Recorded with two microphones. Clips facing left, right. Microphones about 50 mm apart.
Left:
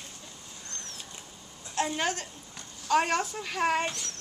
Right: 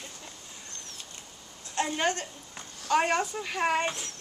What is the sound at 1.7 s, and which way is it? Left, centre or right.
A woman's voice, centre.